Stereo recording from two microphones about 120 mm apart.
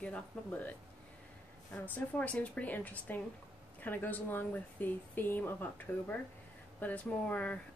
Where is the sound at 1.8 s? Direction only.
15° left (ahead or behind).